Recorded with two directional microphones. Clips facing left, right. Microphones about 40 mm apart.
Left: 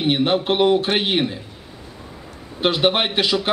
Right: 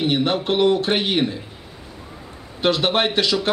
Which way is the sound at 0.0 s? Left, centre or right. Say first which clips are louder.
Left 1 dB; centre.